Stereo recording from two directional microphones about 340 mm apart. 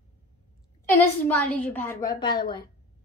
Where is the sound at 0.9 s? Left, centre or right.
Centre.